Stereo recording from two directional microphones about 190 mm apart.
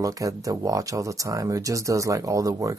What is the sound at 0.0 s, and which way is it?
Speech, 20° right (ahead or behind).